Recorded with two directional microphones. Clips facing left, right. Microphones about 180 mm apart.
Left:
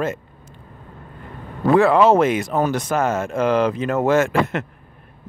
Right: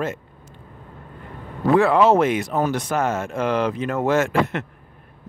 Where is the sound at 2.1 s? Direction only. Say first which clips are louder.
Left 2 dB; 90° left.